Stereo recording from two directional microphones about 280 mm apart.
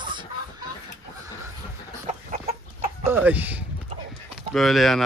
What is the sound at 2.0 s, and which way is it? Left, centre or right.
Chicken, right.